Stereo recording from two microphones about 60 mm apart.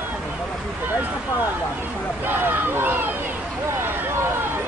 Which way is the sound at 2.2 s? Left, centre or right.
Right.